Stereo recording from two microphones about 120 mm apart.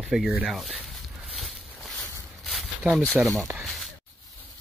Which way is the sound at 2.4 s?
Centre (ahead or behind).